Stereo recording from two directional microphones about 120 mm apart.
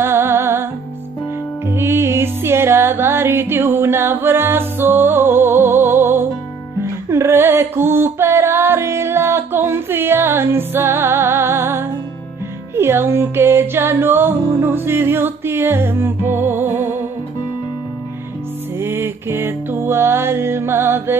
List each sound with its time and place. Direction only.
0.0 s music: 20° right (ahead or behind)
1.7 s music: 20° right (ahead or behind)
18.8 s music: 20° right (ahead or behind)